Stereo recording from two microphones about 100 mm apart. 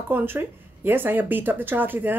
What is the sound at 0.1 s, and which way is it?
Speech, 20° right (ahead or behind).